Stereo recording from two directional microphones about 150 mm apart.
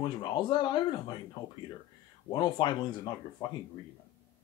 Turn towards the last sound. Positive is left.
turn(degrees=30)  # may be behind; listen again after turning